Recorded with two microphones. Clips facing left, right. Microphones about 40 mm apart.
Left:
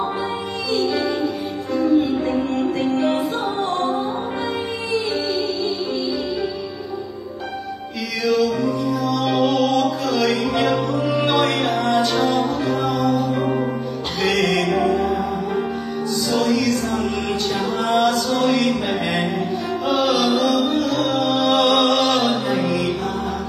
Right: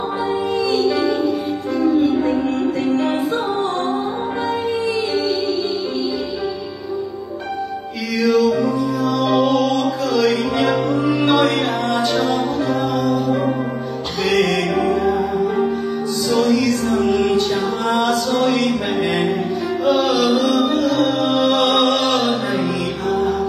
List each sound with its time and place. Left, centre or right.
0.7 s music: centre
8.3 s music: centre
15.0 s music: centre
17.8 s a capella: centre
19.9 s music: centre
21.5 s chant: centre